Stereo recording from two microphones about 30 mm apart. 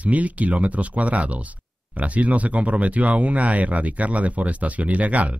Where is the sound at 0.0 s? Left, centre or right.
Right.